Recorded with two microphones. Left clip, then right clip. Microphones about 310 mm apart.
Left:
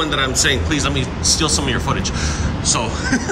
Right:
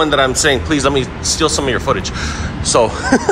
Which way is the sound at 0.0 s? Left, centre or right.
Centre.